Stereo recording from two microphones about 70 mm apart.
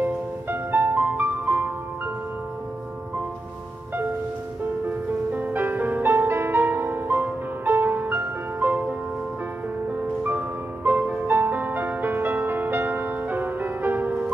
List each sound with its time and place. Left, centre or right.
0.0 s music: right
5.3 s music: right
9.9 s music: right